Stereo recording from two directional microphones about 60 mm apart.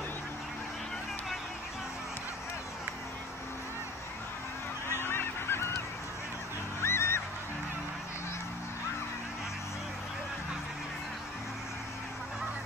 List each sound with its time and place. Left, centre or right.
5.0 s goose: left
6.8 s goose: left